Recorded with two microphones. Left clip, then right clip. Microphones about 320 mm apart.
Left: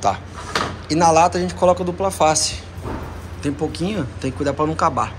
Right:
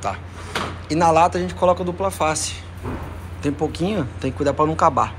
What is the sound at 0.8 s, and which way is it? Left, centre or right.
Speech, centre.